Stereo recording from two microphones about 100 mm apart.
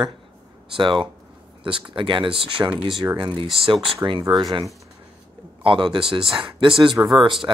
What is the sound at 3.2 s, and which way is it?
Speech, 50° right (ahead or behind).